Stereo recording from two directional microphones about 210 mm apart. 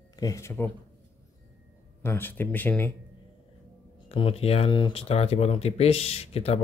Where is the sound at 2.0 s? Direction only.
10° left (ahead or behind).